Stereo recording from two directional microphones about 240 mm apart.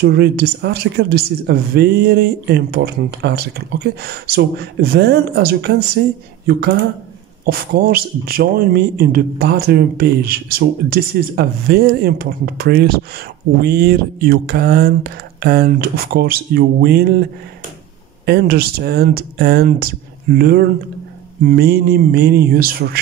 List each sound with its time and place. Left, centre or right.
0.0 s a man's voice: right
7.4 s a man's voice: right